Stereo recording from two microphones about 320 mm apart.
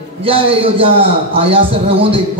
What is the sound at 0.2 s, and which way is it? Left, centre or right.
A man's voice, centre.